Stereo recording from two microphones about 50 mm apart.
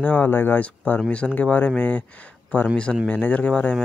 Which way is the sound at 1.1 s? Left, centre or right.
Left.